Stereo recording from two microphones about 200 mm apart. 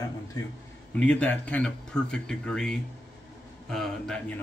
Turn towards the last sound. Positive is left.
turn(degrees=5)  # may be behind; listen again after turning